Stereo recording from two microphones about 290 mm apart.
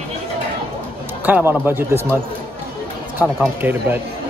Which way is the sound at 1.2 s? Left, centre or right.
Centre.